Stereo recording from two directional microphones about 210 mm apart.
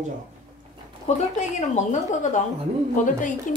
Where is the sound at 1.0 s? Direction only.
35° left (ahead or behind).